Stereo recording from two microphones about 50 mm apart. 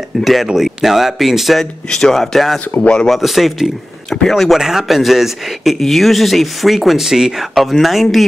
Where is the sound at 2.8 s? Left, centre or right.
Centre.